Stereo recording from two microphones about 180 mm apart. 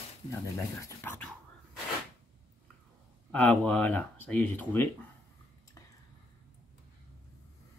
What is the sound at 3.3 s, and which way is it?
Speech, 5° left (ahead or behind).